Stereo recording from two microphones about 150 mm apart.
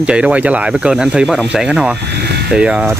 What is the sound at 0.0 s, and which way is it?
Speech, 5° right (ahead or behind).